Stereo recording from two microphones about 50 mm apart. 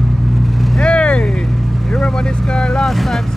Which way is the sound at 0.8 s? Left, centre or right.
Centre.